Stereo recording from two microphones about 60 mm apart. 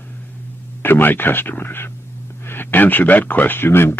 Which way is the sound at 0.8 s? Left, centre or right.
Left.